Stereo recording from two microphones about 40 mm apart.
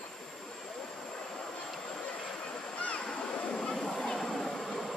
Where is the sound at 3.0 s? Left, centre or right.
Left.